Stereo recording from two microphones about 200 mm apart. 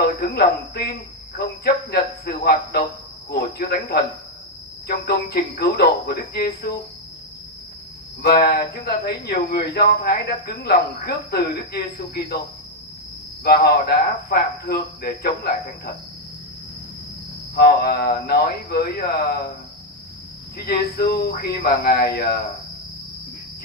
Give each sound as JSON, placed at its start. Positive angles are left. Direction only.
{"t": 0.2, "sound": "speech", "side_deg": 50}
{"t": 8.2, "sound": "speech", "side_deg": 50}
{"t": 13.4, "sound": "speech", "side_deg": 50}
{"t": 17.6, "sound": "speech", "side_deg": 50}
{"t": 20.5, "sound": "speech", "side_deg": 50}